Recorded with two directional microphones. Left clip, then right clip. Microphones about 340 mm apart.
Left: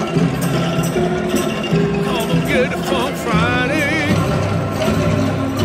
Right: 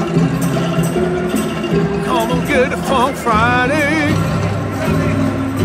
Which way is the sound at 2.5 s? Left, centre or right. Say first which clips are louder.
Right 3 dB; centre.